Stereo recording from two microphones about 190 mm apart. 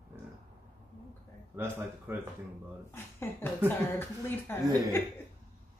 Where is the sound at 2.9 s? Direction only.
15° left (ahead or behind).